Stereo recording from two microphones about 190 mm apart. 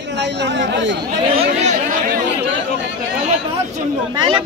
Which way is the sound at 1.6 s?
40° right (ahead or behind).